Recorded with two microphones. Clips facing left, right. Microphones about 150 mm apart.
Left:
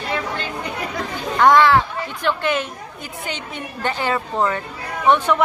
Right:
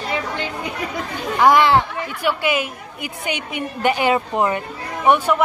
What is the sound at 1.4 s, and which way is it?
A woman's voice, 10° right (ahead or behind).